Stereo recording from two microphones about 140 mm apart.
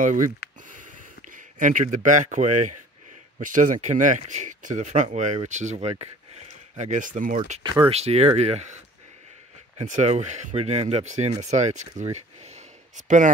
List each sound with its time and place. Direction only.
0.0 s a sound: 65° right (ahead or behind)
1.3 s speech: 70° right (ahead or behind)
7.6 s speech: 35° right (ahead or behind)
7.9 s speech: 50° right (ahead or behind)
9.8 s speech: 55° right (ahead or behind)